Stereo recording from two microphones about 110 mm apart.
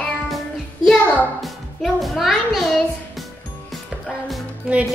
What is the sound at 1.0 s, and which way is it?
Speech, 15° left (ahead or behind).